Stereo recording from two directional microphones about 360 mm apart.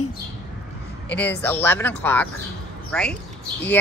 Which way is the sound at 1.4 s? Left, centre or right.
Centre.